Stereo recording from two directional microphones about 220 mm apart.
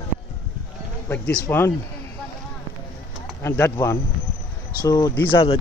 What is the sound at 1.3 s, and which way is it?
Speech, 15° left (ahead or behind).